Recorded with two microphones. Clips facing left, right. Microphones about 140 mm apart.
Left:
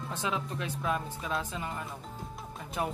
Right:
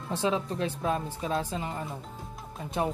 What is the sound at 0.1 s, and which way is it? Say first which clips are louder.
Speech: right 7 dB; 30° right (ahead or behind).